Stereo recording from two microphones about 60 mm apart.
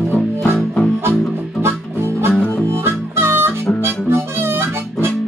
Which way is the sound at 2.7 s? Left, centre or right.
Right.